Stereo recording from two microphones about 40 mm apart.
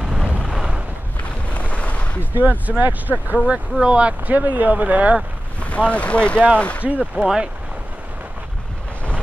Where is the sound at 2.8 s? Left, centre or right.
Right.